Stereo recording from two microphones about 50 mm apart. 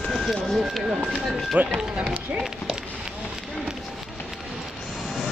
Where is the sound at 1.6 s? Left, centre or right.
Right.